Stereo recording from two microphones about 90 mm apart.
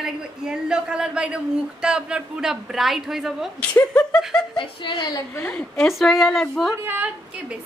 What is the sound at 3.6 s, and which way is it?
Speech, 15° left (ahead or behind).